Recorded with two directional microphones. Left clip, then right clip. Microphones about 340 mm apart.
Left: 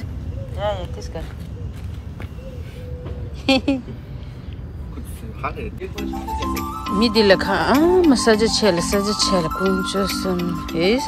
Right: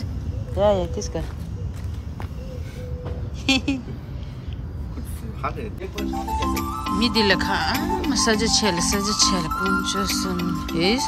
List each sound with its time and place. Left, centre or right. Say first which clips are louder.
0.6 s speech: right 5 dB; right
3.4 s speech: left 3 dB; centre
5.4 s speech: left 2 dB; centre